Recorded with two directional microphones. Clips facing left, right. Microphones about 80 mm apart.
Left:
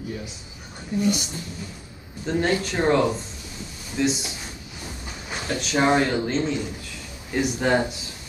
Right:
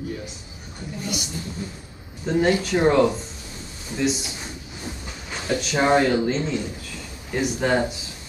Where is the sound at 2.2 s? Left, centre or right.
Centre.